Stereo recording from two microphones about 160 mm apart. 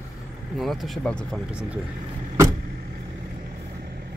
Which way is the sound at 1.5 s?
5° right (ahead or behind).